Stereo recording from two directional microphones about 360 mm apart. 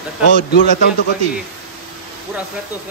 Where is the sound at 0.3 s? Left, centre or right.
Left.